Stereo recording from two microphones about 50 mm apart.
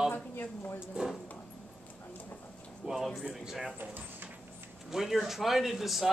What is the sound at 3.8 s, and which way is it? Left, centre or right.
Drawer open or close, right.